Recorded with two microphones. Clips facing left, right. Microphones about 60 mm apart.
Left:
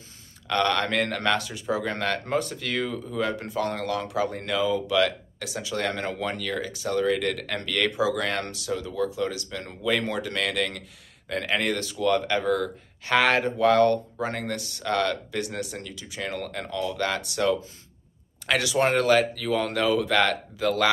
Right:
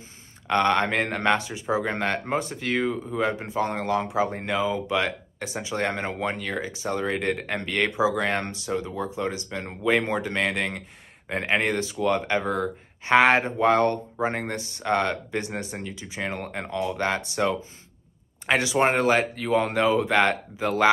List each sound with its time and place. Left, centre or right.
0.5 s speech: right